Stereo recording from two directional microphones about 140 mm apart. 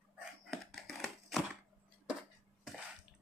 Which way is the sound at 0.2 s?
Centre (ahead or behind).